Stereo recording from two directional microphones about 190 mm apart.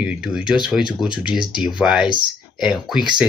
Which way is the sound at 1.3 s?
25° left (ahead or behind).